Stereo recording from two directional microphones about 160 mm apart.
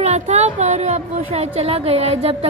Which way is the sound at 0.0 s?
45° right (ahead or behind).